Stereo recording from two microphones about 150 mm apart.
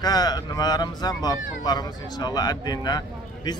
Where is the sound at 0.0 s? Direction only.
25° left (ahead or behind).